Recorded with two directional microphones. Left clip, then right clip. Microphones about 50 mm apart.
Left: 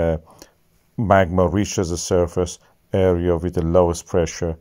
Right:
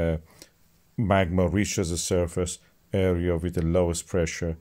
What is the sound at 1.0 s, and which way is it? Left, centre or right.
Speech, centre.